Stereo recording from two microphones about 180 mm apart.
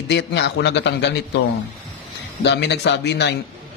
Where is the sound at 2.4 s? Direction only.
70° left (ahead or behind).